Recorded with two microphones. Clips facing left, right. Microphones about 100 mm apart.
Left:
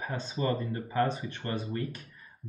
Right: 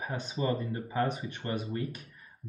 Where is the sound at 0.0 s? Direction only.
15° right (ahead or behind).